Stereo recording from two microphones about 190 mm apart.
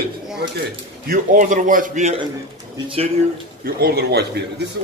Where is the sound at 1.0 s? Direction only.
45° right (ahead or behind).